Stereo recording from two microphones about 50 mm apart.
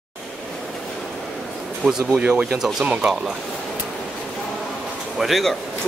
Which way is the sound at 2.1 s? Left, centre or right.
Right.